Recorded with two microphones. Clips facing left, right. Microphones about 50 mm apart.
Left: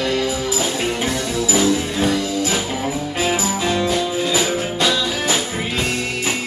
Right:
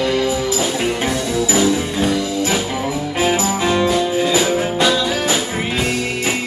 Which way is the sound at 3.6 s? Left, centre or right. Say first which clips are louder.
Right 4 dB; centre.